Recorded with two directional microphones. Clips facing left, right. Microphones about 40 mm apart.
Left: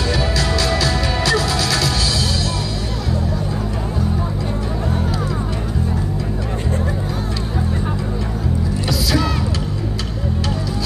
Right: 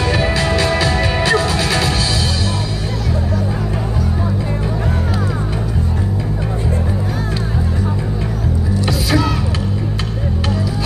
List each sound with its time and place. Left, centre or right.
0.0 s music: right